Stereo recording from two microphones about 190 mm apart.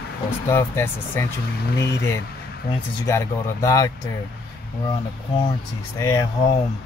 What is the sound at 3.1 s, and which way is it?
Speech, 15° left (ahead or behind).